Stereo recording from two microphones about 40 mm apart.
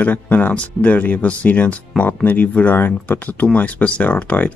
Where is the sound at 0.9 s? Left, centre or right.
Left.